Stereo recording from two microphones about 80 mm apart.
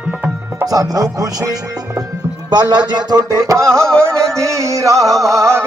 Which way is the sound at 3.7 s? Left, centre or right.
Centre.